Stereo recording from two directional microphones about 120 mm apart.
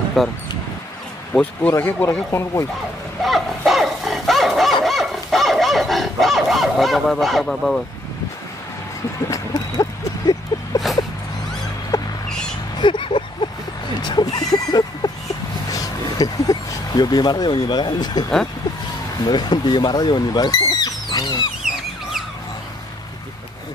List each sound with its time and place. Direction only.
0.2 s speech: centre (ahead or behind)
1.3 s speech: 10° left (ahead or behind)
3.2 s dog: centre (ahead or behind)
9.3 s vehicle: 30° left (ahead or behind)
11.9 s a sound: 25° left (ahead or behind)
12.8 s a sound: 45° left (ahead or behind)
15.7 s speech: 30° left (ahead or behind)
19.2 s speech: 35° left (ahead or behind)
20.8 s a sound: 30° left (ahead or behind)